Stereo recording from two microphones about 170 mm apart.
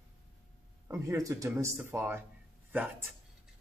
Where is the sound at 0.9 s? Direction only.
20° right (ahead or behind).